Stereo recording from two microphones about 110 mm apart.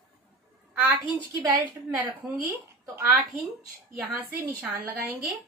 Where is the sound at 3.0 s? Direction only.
15° right (ahead or behind).